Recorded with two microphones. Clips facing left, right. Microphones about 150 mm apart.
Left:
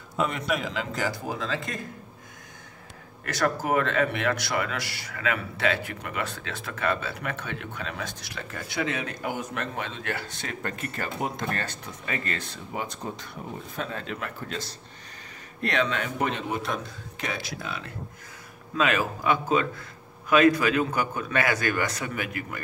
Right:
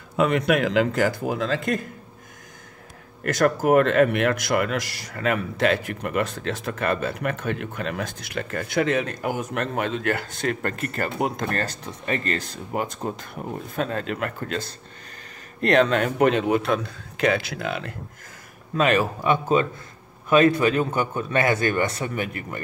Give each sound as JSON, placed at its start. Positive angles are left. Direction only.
{"t": 0.2, "sound": "a man's voice", "side_deg": -75}
{"t": 3.3, "sound": "a man's voice", "side_deg": -55}
{"t": 11.3, "sound": "a man's voice", "side_deg": -40}
{"t": 15.7, "sound": "a man's voice", "side_deg": -50}
{"t": 18.8, "sound": "a man's voice", "side_deg": -35}